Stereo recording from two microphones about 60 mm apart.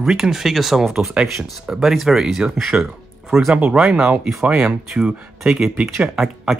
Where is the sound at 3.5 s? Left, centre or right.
Centre.